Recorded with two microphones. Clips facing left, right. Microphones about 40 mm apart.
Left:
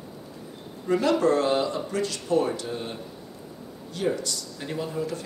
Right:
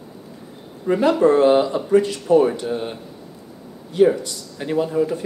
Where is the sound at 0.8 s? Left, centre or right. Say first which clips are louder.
Right 6 dB; centre.